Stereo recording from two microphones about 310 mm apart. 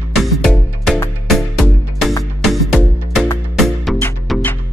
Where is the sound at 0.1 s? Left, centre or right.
Centre.